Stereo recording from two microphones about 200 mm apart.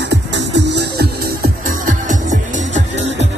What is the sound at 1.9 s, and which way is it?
Music, 40° right (ahead or behind).